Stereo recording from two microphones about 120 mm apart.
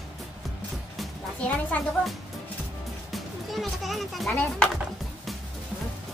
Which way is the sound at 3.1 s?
Centre (ahead or behind).